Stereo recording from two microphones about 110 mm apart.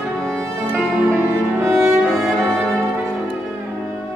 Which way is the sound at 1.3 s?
25° right (ahead or behind).